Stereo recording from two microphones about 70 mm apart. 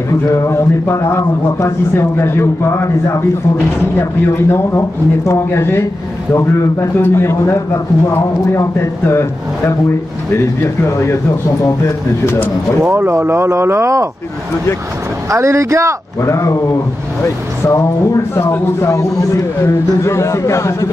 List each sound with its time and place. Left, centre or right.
0.3 s a man's voice: left
12.9 s speech: right
15.2 s speech: right
16.2 s a man's voice: left
17.6 s a man's voice: left
18.9 s a man's voice: left